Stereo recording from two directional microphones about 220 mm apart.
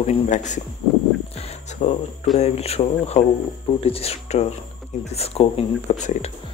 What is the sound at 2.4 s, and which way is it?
Speech, 30° left (ahead or behind).